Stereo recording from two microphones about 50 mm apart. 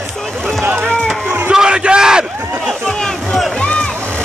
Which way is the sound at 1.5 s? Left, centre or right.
Centre.